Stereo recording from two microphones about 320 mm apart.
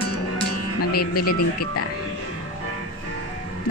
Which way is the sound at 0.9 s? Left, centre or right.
Left.